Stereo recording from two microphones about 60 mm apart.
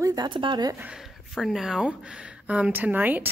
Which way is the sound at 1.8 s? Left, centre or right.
Centre.